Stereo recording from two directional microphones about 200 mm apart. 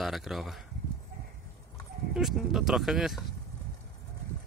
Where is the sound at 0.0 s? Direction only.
Centre (ahead or behind).